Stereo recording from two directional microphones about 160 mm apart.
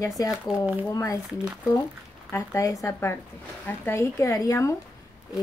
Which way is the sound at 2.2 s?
20° left (ahead or behind).